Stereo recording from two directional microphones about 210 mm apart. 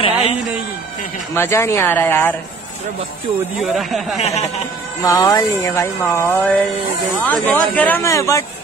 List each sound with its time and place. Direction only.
0.0 s a sound: 30° left (ahead or behind)
1.3 s speech: 10° left (ahead or behind)
3.5 s speech: centre (ahead or behind)
4.2 s speech: 30° left (ahead or behind)
5.0 s speech: 15° left (ahead or behind)